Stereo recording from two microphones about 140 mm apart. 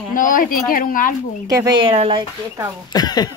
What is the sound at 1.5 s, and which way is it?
Speech, 25° right (ahead or behind).